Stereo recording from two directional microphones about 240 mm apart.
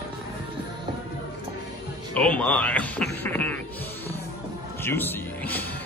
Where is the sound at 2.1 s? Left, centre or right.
Centre.